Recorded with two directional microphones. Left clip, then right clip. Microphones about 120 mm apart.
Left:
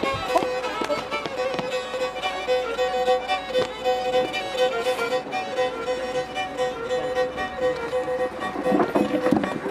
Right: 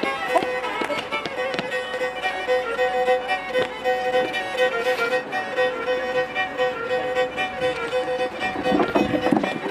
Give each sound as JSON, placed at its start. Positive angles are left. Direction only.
{"t": 0.0, "sound": "music", "side_deg": 25}
{"t": 2.5, "sound": "music", "side_deg": 25}
{"t": 8.6, "sound": "music", "side_deg": -15}